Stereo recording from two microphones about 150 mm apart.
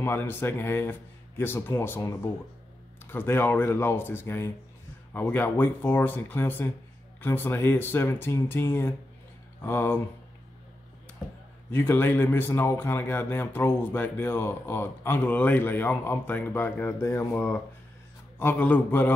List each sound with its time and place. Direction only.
0.0 s speech: 15° left (ahead or behind)
11.7 s speech: 15° left (ahead or behind)